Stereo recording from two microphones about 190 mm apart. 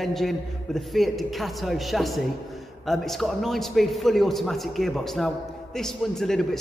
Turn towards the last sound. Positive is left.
turn(degrees=0)  # may be behind; listen again after turning